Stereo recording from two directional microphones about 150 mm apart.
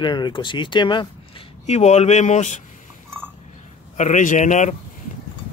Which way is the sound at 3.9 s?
55° left (ahead or behind).